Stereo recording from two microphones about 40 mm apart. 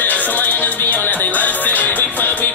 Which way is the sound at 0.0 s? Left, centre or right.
Left.